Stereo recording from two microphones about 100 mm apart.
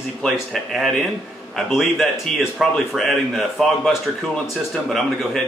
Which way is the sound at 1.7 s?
Centre (ahead or behind).